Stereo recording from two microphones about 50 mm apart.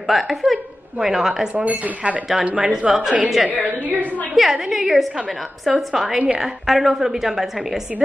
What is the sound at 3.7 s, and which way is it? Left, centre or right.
Speech, right.